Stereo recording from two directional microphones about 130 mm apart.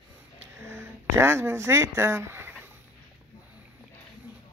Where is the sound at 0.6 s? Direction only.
20° right (ahead or behind).